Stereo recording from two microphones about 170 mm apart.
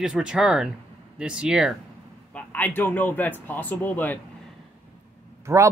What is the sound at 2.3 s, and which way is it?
A man's voice, 10° left (ahead or behind).